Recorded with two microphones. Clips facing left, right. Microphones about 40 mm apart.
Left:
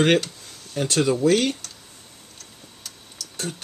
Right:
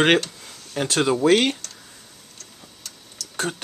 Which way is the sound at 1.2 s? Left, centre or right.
Right.